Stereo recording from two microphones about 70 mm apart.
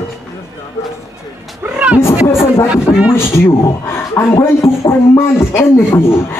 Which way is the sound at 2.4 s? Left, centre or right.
Left.